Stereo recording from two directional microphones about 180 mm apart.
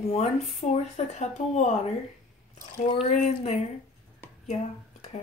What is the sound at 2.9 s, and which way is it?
Speech, 35° left (ahead or behind).